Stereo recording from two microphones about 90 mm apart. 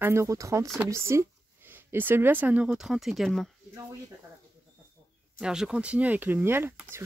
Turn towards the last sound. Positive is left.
turn(degrees=-25)  # may be behind; listen again after turning